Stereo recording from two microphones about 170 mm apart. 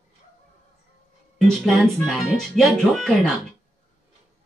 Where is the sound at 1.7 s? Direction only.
Centre (ahead or behind).